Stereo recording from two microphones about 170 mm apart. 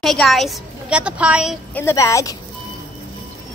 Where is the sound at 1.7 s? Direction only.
15° left (ahead or behind).